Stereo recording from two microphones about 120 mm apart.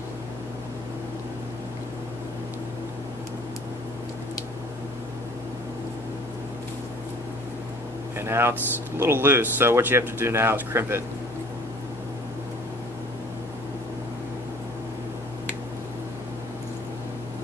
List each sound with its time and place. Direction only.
8.2 s speech: 20° right (ahead or behind)